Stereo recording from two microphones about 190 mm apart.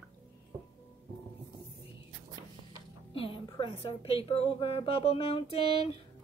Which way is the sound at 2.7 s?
25° left (ahead or behind).